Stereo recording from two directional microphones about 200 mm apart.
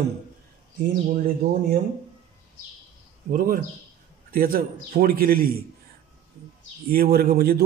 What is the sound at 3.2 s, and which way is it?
A man's voice, 45° right (ahead or behind).